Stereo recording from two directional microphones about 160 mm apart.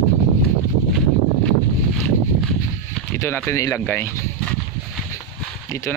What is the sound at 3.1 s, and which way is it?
Speech, 15° left (ahead or behind).